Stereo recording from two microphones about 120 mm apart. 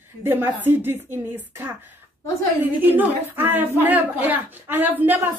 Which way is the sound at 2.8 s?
15° right (ahead or behind).